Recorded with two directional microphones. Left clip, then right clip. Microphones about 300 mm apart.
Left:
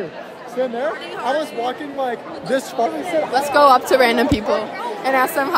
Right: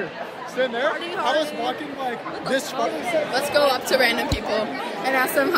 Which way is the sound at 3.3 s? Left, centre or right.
Centre.